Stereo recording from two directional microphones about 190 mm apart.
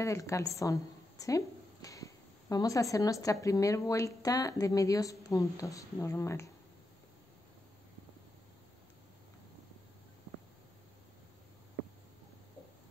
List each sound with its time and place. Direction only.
0.0 s speech: 15° left (ahead or behind)